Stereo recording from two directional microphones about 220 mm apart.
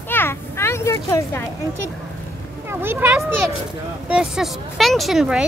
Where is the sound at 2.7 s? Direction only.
10° right (ahead or behind).